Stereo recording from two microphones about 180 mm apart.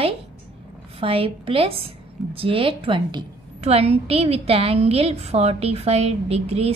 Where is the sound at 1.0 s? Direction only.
30° right (ahead or behind).